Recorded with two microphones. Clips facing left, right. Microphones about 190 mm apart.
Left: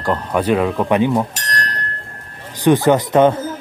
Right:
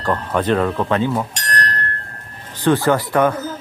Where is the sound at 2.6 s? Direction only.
15° left (ahead or behind).